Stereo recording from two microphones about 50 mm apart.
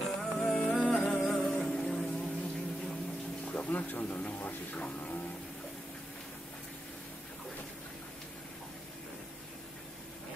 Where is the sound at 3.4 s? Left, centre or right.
Left.